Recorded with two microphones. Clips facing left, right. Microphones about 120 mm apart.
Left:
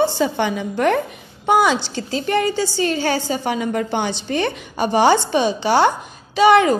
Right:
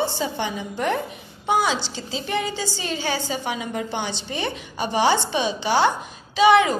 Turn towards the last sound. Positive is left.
turn(degrees=45)  # may be behind; listen again after turning